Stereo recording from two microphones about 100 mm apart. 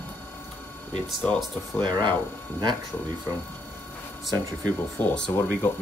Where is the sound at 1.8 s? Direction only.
50° right (ahead or behind).